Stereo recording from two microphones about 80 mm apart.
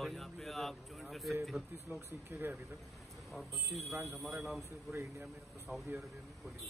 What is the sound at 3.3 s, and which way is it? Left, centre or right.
Speech, centre.